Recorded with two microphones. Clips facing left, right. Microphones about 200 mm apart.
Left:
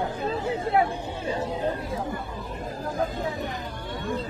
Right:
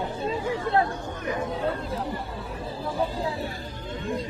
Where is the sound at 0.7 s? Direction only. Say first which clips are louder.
Left 1 dB; 20° left (ahead or behind).